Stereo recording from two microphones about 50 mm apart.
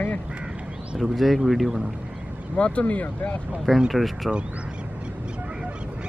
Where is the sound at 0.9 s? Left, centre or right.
Centre.